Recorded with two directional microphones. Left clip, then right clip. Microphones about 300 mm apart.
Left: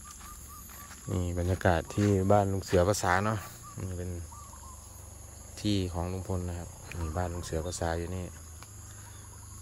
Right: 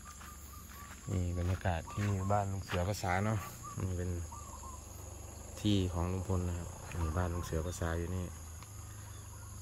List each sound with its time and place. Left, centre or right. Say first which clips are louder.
1.1 s speech: left 8 dB; centre
2.1 s speech: left 9 dB; left
2.8 s speech: left 8 dB; centre
5.6 s speech: left 3 dB; centre